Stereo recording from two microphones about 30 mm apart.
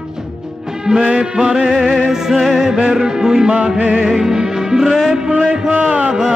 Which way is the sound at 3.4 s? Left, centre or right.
Right.